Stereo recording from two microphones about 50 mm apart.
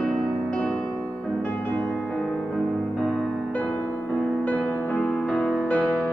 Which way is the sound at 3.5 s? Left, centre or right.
Left.